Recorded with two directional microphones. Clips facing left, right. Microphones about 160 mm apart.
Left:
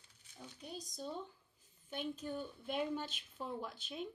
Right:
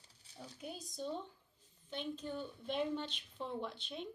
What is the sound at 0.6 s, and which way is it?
A woman's voice, 5° right (ahead or behind).